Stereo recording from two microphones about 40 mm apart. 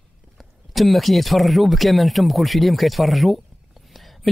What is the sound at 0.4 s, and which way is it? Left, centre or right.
Speech, centre.